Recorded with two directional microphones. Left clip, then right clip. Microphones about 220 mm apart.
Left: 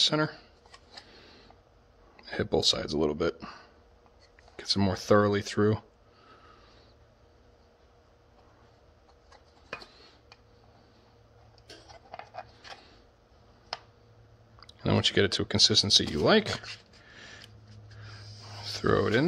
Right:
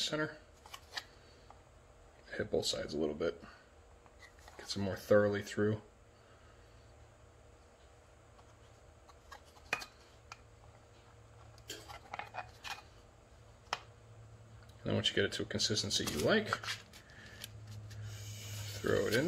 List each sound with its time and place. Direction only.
0.0 s speech: 65° left (ahead or behind)
2.2 s speech: 65° left (ahead or behind)
4.6 s speech: 65° left (ahead or behind)
14.8 s speech: 65° left (ahead or behind)
18.8 s speech: 55° left (ahead or behind)